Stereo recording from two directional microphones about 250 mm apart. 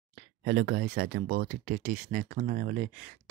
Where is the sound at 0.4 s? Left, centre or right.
Right.